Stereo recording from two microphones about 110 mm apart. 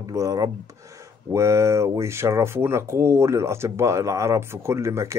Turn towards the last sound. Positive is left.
turn(degrees=-25)  # may be behind; listen again after turning